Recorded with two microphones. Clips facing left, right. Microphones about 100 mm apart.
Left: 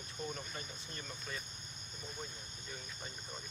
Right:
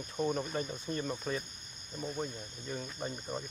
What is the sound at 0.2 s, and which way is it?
Speech, 65° right (ahead or behind).